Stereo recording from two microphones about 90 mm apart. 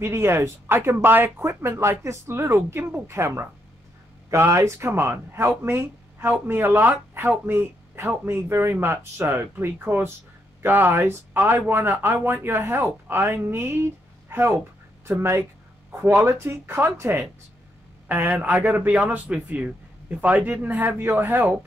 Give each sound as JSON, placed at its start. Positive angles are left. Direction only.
{"t": 0.0, "sound": "speech", "side_deg": -30}